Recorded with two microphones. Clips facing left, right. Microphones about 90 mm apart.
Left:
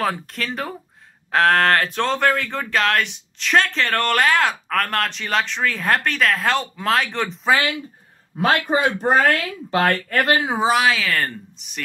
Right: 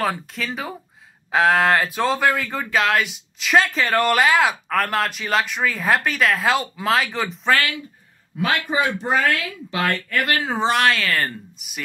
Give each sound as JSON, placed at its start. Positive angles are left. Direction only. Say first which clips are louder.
{"t": 0.0, "sound": "speech", "louder": "even", "side_deg": 0}
{"t": 7.4, "sound": "speech", "louder": "left 1 dB", "side_deg": 15}
{"t": 8.4, "sound": "speech", "louder": "left 3 dB", "side_deg": 40}
{"t": 10.3, "sound": "speech", "louder": "left 2 dB", "side_deg": 15}